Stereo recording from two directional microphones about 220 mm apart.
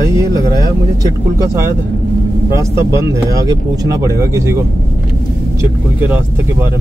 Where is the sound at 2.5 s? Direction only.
15° right (ahead or behind).